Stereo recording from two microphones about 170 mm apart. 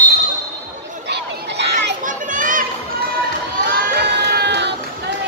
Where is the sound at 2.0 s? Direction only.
50° right (ahead or behind).